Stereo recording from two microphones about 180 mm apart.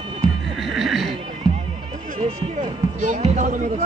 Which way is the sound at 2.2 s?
35° right (ahead or behind).